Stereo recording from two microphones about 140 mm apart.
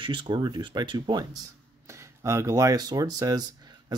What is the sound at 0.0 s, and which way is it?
Speech, 35° right (ahead or behind).